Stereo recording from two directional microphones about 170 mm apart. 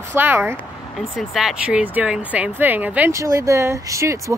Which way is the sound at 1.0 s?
Centre (ahead or behind).